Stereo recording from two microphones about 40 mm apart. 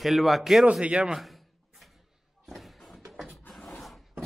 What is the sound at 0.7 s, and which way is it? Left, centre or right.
Speech, right.